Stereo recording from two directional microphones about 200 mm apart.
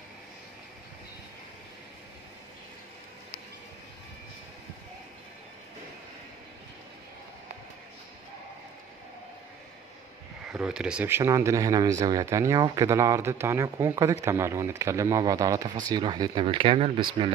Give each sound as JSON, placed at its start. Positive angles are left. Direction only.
{"t": 10.4, "sound": "speech", "side_deg": -5}